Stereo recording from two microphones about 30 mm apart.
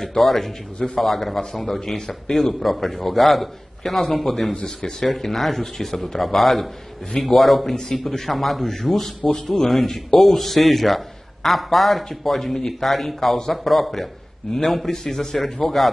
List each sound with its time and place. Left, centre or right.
0.0 s a man's voice: centre
2.0 s a man's voice: centre
7.9 s a man's voice: centre